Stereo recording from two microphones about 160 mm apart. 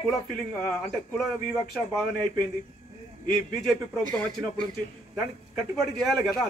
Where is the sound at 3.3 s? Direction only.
Centre (ahead or behind).